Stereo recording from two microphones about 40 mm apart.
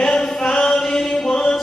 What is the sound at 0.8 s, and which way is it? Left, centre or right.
Mantra, centre.